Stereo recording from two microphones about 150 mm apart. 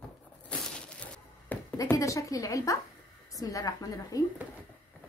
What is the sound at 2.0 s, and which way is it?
A woman's voice, 20° left (ahead or behind).